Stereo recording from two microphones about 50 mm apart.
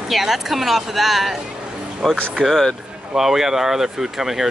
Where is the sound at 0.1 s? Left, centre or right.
Centre.